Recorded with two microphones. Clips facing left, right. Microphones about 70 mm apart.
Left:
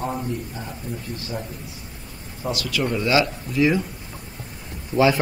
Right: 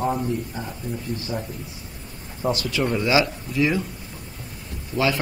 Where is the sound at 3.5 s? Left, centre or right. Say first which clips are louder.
Left 2 dB; centre.